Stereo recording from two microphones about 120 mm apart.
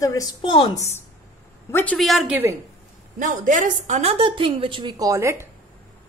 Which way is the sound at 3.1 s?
90° right.